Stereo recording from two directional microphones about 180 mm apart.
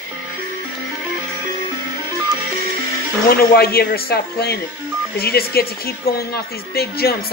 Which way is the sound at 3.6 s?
60° left (ahead or behind).